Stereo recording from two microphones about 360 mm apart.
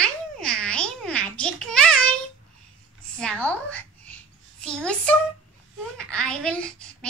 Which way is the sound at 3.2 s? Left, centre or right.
Centre.